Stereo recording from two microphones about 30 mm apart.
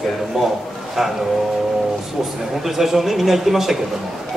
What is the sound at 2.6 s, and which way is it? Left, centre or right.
Speech, centre.